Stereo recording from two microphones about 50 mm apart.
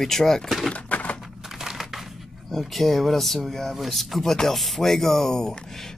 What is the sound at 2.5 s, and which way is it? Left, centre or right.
Speech, centre.